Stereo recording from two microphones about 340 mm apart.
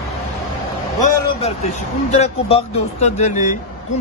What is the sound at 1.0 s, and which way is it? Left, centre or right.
A man's voice, centre.